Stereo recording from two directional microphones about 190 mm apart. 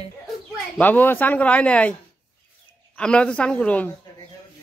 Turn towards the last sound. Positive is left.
turn(degrees=5)  # may be behind; listen again after turning